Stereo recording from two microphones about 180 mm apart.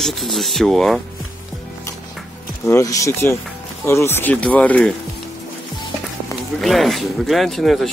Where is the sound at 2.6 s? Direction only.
15° left (ahead or behind).